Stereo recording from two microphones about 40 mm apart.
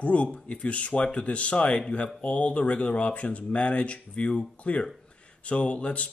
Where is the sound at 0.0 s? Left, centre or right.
Left.